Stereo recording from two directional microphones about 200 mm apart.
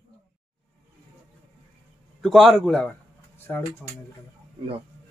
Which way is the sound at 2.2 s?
Centre (ahead or behind).